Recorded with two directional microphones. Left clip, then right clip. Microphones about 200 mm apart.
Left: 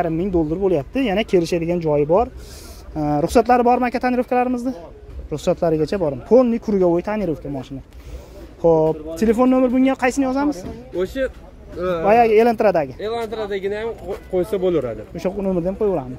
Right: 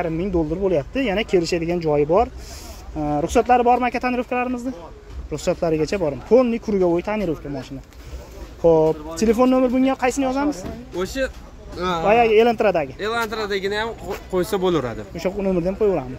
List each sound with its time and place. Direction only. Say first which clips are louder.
0.0 s speech: left 2 dB; 25° left (ahead or behind)
3.0 s speech: left 3 dB; 25° left (ahead or behind)
8.5 s speech: even; 10° left (ahead or behind)
11.0 s speech: left 2 dB; 35° right (ahead or behind)
12.1 s speech: left 1 dB; 15° left (ahead or behind)
13.0 s speech: right 1 dB; 50° right (ahead or behind)
15.1 s speech: even; 10° left (ahead or behind)